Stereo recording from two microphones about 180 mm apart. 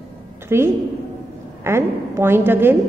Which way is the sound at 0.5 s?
15° right (ahead or behind).